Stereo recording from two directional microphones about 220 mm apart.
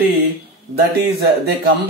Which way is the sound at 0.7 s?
45° right (ahead or behind).